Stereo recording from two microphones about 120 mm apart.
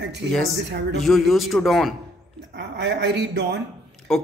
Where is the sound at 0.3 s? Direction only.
Centre (ahead or behind).